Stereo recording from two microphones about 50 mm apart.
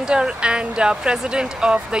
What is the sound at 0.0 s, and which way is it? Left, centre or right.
Speech, centre.